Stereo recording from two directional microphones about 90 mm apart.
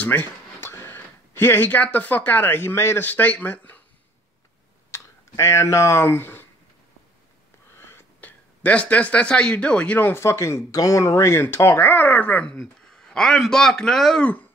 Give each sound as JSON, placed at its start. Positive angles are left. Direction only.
{"t": 0.0, "sound": "speech", "side_deg": 20}
{"t": 4.9, "sound": "speech", "side_deg": 35}
{"t": 7.7, "sound": "speech", "side_deg": 25}
{"t": 12.5, "sound": "speech", "side_deg": 5}